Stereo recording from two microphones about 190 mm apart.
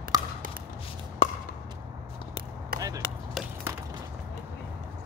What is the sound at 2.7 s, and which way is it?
Chop, 50° right (ahead or behind).